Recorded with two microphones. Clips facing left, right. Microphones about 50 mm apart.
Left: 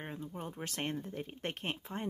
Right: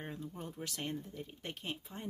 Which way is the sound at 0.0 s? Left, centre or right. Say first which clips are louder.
Left 2 dB; left.